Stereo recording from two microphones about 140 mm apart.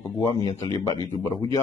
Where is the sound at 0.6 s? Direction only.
20° left (ahead or behind).